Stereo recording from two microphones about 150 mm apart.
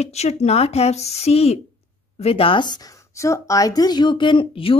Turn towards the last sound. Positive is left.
turn(degrees=35)  # may be behind; listen again after turning